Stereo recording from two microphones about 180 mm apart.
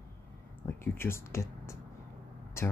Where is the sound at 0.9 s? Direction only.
15° left (ahead or behind).